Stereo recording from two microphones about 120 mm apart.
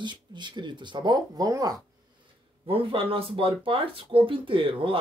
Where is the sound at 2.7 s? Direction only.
50° right (ahead or behind).